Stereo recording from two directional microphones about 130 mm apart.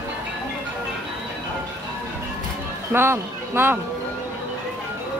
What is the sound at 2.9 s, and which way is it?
Speech, 15° right (ahead or behind).